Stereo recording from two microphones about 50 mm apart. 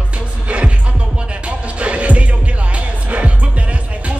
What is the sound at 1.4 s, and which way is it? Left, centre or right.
Music, right.